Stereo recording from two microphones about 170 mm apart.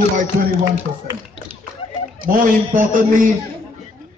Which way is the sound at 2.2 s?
55° right (ahead or behind).